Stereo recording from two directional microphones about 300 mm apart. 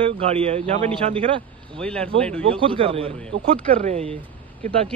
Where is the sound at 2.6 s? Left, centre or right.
Centre.